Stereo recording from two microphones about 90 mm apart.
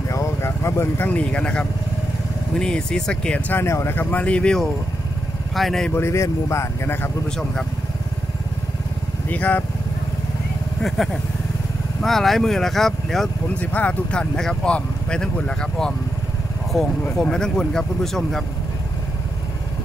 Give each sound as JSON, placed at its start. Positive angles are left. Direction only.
{"t": 0.1, "sound": "speech", "side_deg": 35}
{"t": 3.6, "sound": "speech", "side_deg": 30}
{"t": 5.9, "sound": "speech", "side_deg": 30}
{"t": 9.3, "sound": "speech", "side_deg": 20}
{"t": 10.8, "sound": "speech", "side_deg": 5}
{"t": 13.6, "sound": "speech", "side_deg": 15}
{"t": 17.0, "sound": "speech", "side_deg": 10}